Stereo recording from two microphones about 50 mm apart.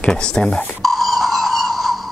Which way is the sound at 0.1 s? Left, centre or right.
Centre.